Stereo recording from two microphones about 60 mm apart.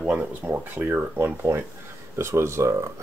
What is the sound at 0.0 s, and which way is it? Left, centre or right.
Speech, right.